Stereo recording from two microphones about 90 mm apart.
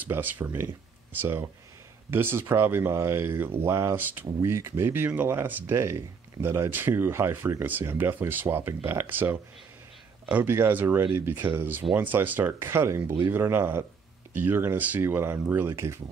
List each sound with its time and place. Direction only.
0.0 s speech: 20° right (ahead or behind)